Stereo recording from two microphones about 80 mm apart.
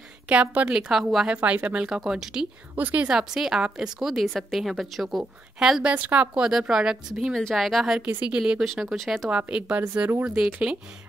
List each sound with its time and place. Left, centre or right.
0.3 s a woman's voice: centre
2.0 s a woman's voice: centre
2.7 s speech: right
3.1 s a woman's voice: centre
7.3 s a woman's voice: centre
8.6 s a woman's voice: centre
9.3 s a woman's voice: centre
10.2 s a woman's voice: centre